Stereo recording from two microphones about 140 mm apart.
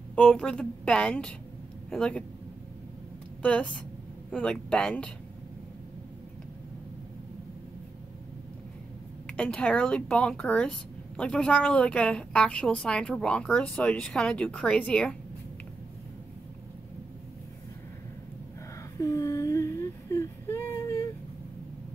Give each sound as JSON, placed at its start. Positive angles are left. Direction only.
{"t": 0.1, "sound": "a woman's voice", "side_deg": 5}
{"t": 3.4, "sound": "a woman's voice", "side_deg": 5}
{"t": 9.4, "sound": "a woman's voice", "side_deg": 10}
{"t": 18.9, "sound": "whimper", "side_deg": 25}